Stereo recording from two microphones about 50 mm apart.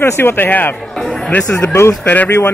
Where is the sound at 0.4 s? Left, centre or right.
Left.